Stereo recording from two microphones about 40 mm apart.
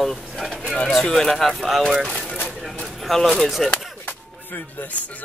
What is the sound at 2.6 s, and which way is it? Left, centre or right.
Bird, centre.